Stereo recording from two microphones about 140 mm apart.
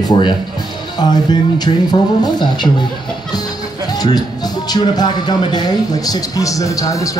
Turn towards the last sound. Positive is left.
turn(degrees=25)  # may be behind; listen again after turning